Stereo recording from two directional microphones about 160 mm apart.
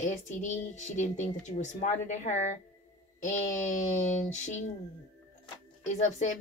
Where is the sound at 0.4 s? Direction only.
50° left (ahead or behind).